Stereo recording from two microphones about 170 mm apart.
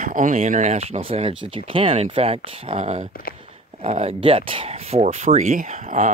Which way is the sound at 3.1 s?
60° left (ahead or behind).